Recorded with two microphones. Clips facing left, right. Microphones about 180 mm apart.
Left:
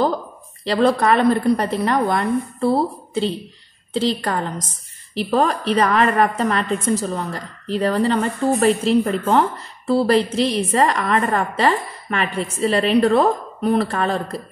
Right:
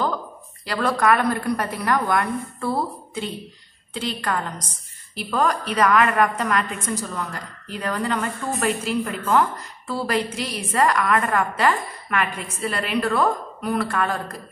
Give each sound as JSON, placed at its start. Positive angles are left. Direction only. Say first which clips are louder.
{"t": 0.7, "sound": "a woman's voice", "louder": "left 4 dB", "side_deg": 30}